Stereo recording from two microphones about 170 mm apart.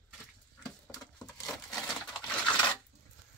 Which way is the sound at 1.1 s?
5° left (ahead or behind).